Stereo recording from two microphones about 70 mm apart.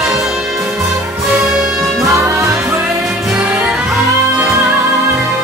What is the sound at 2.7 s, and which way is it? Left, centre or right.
Music, right.